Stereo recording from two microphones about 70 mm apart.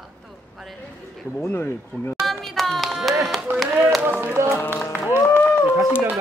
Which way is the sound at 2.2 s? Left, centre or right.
Centre.